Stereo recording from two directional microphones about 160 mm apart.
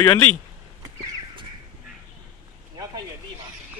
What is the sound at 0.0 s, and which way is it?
Speech, 20° left (ahead or behind).